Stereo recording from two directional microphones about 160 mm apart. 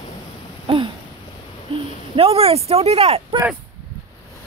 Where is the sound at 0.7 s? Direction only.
35° right (ahead or behind).